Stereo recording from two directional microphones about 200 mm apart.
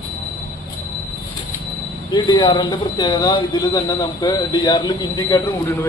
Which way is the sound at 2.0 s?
20° left (ahead or behind).